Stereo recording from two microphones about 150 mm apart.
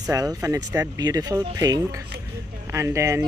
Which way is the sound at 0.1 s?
20° right (ahead or behind).